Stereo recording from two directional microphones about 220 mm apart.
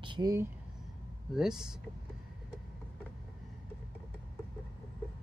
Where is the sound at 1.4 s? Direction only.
5° right (ahead or behind).